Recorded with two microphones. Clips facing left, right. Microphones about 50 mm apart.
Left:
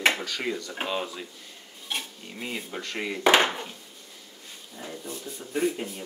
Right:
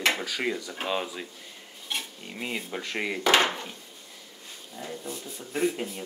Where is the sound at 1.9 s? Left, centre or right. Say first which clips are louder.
Even; centre.